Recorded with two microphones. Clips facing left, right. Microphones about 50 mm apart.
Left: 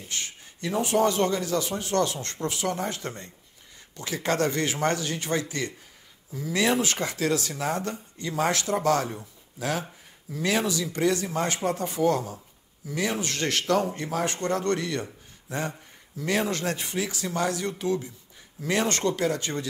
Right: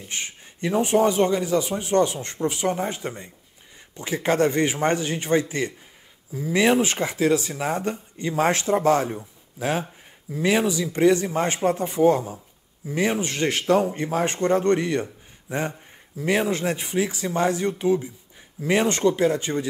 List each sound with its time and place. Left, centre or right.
0.1 s a man's voice: right